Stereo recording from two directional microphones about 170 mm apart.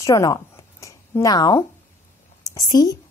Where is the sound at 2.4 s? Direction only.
20° left (ahead or behind).